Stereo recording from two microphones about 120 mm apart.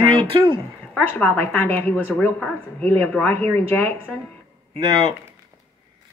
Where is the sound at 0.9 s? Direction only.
10° left (ahead or behind).